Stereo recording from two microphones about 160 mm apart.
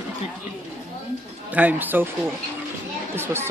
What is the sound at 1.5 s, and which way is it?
Speech, 10° right (ahead or behind).